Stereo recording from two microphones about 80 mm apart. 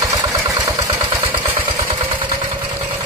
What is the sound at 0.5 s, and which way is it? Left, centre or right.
Vehicle, right.